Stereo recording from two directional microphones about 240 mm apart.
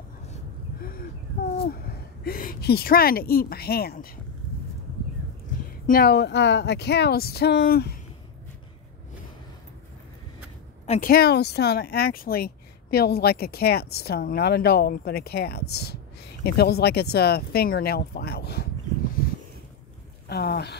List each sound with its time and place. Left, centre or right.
2.2 s speech: left
5.9 s speech: left
10.9 s speech: left
19.2 s a sound: left
20.2 s speech: left